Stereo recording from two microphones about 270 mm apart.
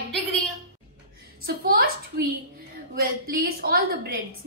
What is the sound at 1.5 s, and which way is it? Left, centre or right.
A woman's voice, right.